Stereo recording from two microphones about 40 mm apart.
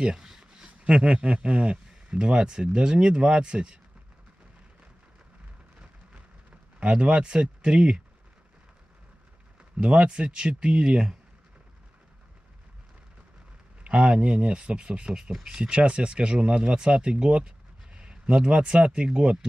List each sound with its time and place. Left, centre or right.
0.0 s a sound: centre
0.8 s speech: right
6.8 s speech: right
9.6 s speech: right
13.8 s speech: right